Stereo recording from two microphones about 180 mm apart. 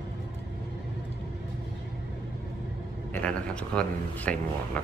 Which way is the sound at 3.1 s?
5° left (ahead or behind).